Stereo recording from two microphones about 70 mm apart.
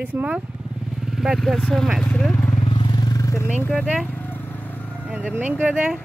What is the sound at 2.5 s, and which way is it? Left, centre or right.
Vehicle, left.